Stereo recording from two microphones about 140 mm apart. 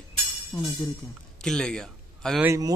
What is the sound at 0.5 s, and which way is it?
Speech, 20° left (ahead or behind).